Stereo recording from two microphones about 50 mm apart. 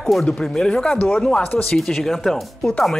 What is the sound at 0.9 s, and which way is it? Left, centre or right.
Speech, left.